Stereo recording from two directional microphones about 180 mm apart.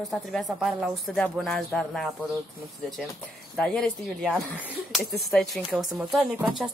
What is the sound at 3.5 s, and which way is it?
Speech, 5° left (ahead or behind).